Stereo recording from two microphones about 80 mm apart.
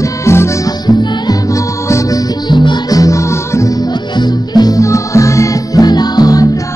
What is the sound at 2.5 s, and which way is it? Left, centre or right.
Music, left.